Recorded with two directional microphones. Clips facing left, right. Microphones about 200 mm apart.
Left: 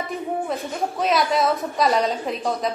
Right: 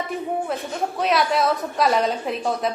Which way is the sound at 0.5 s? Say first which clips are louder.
Even; centre (ahead or behind).